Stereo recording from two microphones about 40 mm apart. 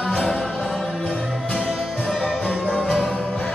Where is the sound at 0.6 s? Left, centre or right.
Centre.